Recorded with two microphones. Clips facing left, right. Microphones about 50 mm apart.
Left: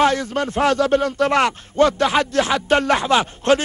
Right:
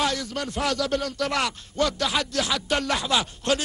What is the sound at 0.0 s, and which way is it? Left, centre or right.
A man's voice, left.